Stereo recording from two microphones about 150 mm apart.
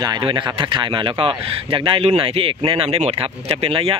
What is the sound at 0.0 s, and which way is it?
A man's voice, 30° right (ahead or behind).